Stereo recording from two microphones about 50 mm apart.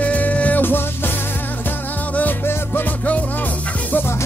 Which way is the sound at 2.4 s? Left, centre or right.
Left.